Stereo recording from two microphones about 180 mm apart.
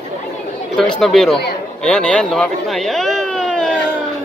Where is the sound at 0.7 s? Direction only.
Centre (ahead or behind).